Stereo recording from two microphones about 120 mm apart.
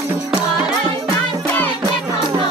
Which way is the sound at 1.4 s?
15° left (ahead or behind).